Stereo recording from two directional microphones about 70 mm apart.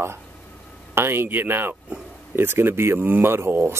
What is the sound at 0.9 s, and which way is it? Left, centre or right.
Speech, right.